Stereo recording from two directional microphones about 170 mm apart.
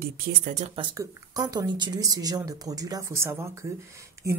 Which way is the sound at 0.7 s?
20° right (ahead or behind).